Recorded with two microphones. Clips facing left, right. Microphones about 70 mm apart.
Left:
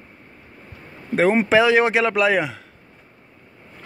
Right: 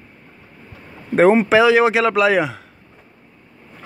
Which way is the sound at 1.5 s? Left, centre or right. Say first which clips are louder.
Right 3 dB; centre.